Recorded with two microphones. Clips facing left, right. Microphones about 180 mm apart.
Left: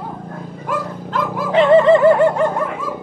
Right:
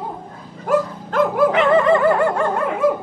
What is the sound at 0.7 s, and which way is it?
Dog, 50° right (ahead or behind).